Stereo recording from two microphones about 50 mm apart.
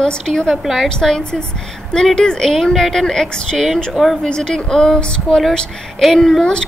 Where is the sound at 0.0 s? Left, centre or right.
Centre.